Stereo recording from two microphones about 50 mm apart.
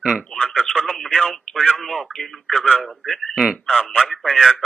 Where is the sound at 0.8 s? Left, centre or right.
Left.